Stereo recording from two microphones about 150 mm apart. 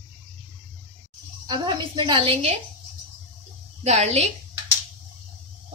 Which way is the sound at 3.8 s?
50° right (ahead or behind).